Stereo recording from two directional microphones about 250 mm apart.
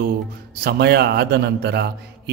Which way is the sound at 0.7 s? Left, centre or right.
Right.